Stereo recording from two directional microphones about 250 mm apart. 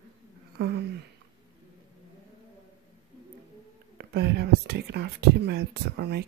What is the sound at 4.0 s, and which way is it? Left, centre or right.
Speech, right.